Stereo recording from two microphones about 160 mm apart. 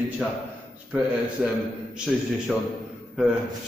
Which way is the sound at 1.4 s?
5° right (ahead or behind).